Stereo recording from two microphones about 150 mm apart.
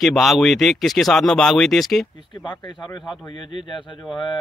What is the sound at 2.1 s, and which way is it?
Speech, 30° left (ahead or behind).